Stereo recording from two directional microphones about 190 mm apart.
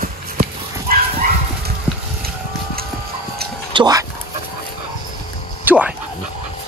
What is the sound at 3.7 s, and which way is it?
Speech, 20° right (ahead or behind).